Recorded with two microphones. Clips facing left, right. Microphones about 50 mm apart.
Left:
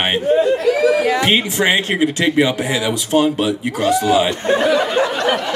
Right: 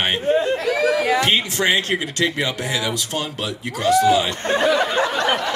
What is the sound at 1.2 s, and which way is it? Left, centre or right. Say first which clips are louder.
Speech: left 3 dB; centre.